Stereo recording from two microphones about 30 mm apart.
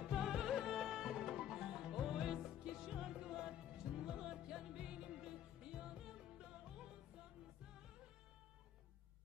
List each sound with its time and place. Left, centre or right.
0.0 s music: centre